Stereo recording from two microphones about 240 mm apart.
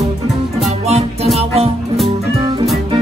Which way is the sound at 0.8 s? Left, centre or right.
Right.